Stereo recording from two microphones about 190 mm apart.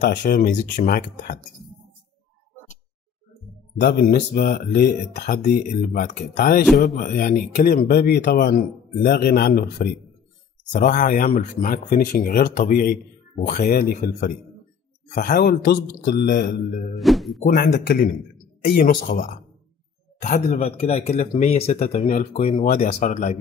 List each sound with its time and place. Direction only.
0.0 s speech: 55° left (ahead or behind)
3.8 s speech: 50° left (ahead or behind)
10.7 s speech: 40° left (ahead or behind)
16.9 s speech: centre (ahead or behind)
17.4 s a man's voice: 50° left (ahead or behind)